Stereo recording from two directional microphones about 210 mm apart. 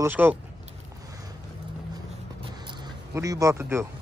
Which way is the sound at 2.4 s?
20° right (ahead or behind).